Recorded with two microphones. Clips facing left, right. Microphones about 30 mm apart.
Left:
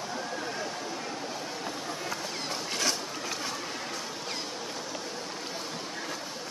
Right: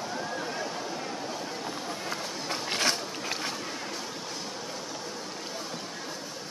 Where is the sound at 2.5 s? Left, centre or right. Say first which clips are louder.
Right 3 dB; right.